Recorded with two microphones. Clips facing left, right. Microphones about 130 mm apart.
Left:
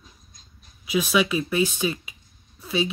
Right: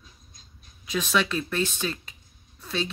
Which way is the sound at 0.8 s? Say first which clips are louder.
Left 4 dB; 10° left (ahead or behind).